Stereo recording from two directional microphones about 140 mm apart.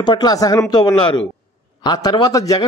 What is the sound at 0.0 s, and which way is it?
A man's voice, 30° left (ahead or behind).